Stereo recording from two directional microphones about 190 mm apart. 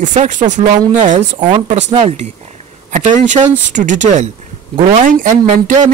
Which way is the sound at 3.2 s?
40° right (ahead or behind).